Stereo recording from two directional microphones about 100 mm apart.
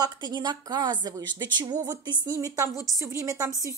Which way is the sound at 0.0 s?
45° right (ahead or behind).